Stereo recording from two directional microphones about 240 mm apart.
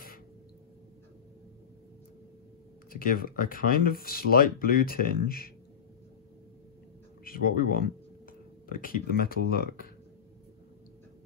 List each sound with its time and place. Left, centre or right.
2.9 s speech: left
7.2 s speech: left